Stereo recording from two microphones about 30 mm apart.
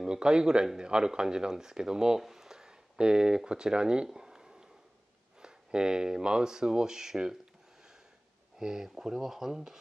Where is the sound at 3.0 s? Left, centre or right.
Right.